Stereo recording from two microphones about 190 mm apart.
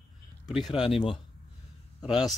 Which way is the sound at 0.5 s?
Centre (ahead or behind).